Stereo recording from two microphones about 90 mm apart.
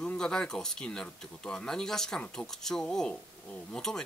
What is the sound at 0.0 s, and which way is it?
Speech, 10° left (ahead or behind).